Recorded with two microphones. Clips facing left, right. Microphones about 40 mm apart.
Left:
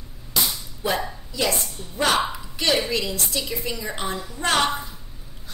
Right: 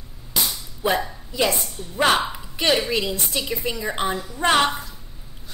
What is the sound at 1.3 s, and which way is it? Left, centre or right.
A woman's voice, right.